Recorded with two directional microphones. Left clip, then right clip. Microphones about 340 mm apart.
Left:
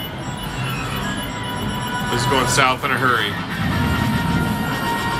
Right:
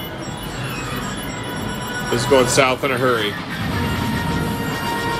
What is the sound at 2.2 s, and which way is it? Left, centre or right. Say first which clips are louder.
Speech: right 4 dB; left.